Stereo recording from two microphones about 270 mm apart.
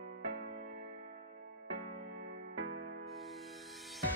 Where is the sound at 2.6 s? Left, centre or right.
Right.